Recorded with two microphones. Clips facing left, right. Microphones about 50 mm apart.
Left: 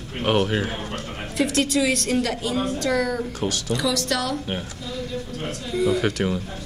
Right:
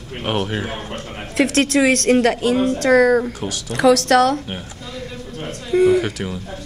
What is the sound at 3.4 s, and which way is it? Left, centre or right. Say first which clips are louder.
Speech: left 1 dB; centre.